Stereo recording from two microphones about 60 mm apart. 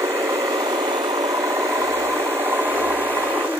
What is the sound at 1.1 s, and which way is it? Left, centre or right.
Engine, right.